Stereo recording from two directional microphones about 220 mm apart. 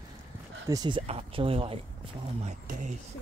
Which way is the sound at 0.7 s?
20° right (ahead or behind).